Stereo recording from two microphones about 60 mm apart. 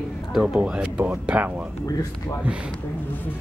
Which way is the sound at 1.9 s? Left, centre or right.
Left.